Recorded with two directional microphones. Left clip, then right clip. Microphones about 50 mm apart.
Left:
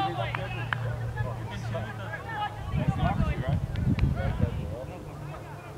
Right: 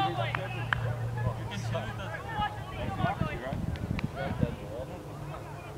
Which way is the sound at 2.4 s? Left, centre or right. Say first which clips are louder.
Right 1 dB; right.